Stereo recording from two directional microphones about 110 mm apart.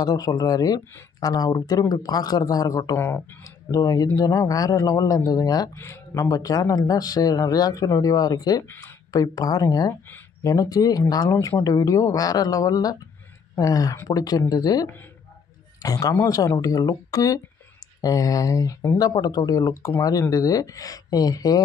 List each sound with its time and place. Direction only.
0.0 s speech: 35° left (ahead or behind)
3.0 s speech: 20° left (ahead or behind)
3.7 s speech: 35° left (ahead or behind)